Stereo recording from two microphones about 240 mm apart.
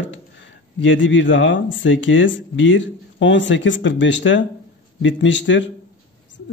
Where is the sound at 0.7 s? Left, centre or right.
Left.